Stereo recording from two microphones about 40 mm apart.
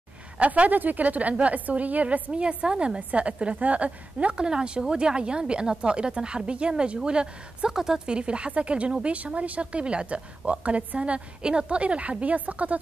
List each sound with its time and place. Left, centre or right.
0.4 s a woman's voice: right
2.3 s speech: right
3.0 s a woman's voice: right
4.4 s speech: right
8.2 s a woman's voice: right